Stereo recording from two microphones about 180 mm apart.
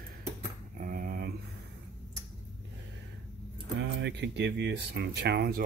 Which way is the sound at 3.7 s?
75° right (ahead or behind).